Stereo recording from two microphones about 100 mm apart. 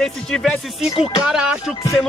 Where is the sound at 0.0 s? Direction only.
5° left (ahead or behind).